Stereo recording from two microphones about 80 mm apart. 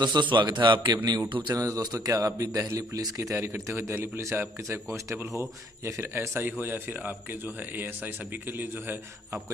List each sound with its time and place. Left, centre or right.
0.0 s a man's voice: right
1.5 s a man's voice: right